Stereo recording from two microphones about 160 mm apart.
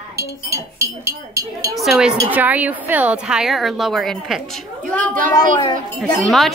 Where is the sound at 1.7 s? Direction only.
Centre (ahead or behind).